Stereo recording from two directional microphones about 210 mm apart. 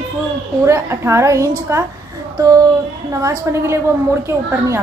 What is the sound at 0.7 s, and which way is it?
A woman's voice, 15° right (ahead or behind).